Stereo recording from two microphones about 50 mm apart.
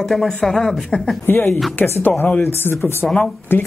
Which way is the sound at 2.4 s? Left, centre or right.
Left.